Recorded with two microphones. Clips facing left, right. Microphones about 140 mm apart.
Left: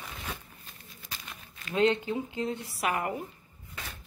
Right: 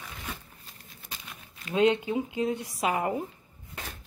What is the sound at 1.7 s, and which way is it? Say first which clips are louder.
Speech: right 2 dB; 15° right (ahead or behind).